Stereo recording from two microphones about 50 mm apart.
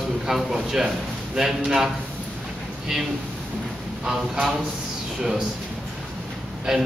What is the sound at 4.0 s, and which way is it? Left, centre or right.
Speech, centre.